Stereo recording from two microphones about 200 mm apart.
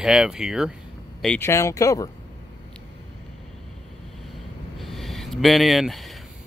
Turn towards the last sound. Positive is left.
turn(degrees=0)  # may be behind; listen again after turning